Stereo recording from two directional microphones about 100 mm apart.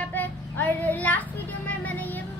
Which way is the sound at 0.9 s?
15° left (ahead or behind).